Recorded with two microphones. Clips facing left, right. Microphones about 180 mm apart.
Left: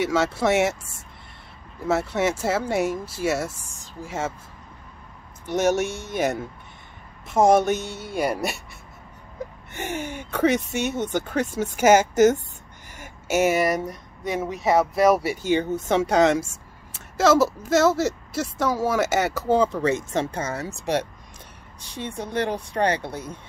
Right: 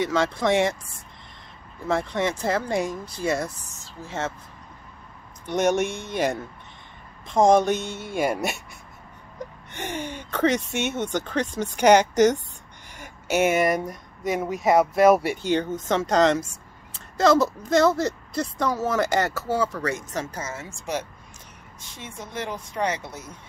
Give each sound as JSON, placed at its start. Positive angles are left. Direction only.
{"t": 0.0, "sound": "speech", "side_deg": 5}
{"t": 1.9, "sound": "a woman's voice", "side_deg": 5}
{"t": 5.5, "sound": "speech", "side_deg": 5}
{"t": 9.7, "sound": "speech", "side_deg": 10}
{"t": 21.9, "sound": "speech", "side_deg": 35}